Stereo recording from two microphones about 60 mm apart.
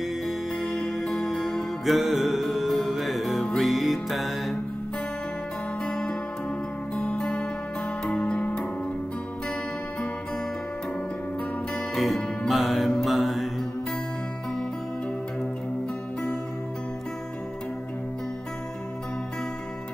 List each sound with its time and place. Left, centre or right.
0.6 s music: centre
5.9 s music: centre
11.9 s music: centre